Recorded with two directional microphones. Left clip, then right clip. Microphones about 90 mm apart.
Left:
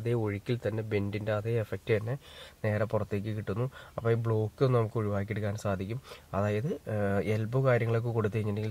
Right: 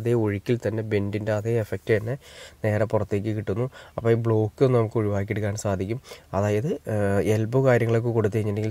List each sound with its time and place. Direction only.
0.0 s speech: 40° right (ahead or behind)